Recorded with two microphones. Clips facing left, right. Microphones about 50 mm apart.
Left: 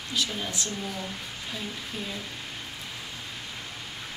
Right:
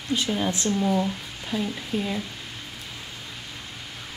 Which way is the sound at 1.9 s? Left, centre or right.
Right.